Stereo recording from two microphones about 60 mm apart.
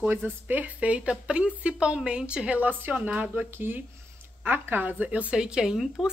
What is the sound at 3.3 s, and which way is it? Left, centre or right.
A woman's voice, right.